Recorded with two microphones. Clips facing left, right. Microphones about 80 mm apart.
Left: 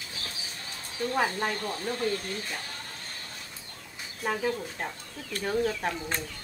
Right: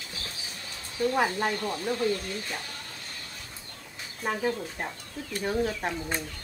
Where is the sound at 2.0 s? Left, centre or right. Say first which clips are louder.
Right 2 dB; left.